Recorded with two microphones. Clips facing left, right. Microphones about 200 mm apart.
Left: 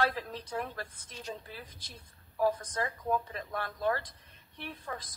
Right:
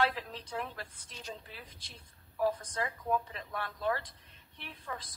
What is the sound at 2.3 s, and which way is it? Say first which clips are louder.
Speech: left 2 dB; 40° left (ahead or behind).